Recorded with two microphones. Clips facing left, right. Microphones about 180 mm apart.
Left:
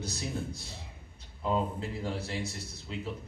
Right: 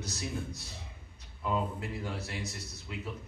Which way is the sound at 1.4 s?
30° left (ahead or behind).